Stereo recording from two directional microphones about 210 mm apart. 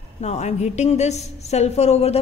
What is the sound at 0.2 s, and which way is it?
A woman's voice, 30° left (ahead or behind).